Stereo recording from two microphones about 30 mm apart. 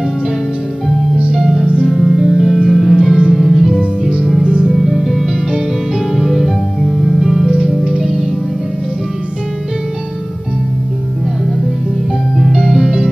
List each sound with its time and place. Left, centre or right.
1.3 s music: centre
1.9 s music: centre
4.4 s music: right
4.7 s music: centre
12.5 s music: centre